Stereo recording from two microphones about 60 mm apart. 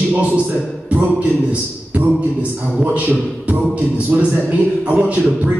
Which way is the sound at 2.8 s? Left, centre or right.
Right.